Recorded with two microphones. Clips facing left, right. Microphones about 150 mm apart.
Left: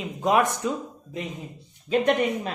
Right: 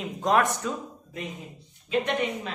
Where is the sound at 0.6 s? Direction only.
20° left (ahead or behind).